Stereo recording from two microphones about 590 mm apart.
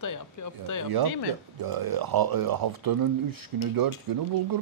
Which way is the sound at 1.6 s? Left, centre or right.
Right.